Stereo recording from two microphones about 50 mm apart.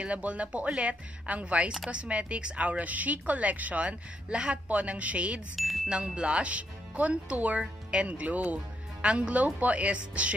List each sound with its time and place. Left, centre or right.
0.0 s a woman's voice: right
5.6 s music: centre
5.9 s a woman's voice: centre